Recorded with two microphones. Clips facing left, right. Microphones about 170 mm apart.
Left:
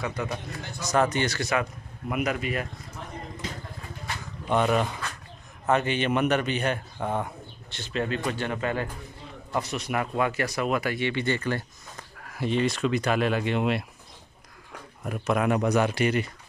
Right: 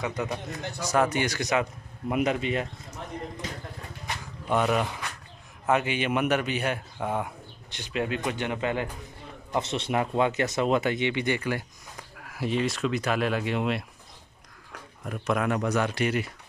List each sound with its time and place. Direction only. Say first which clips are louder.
0.0 s a man's voice: right 1 dB; 20° right (ahead or behind)
4.5 s speech: left 1 dB; 5° right (ahead or behind)
15.0 s speech: left 2 dB; 5° left (ahead or behind)
15.9 s speech: left 2 dB; centre (ahead or behind)